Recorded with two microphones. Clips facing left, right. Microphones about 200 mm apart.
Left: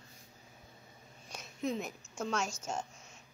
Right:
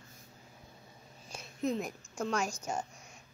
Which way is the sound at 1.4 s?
Centre (ahead or behind).